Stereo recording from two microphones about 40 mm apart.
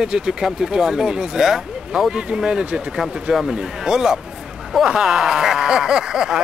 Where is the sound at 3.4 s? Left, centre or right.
Centre.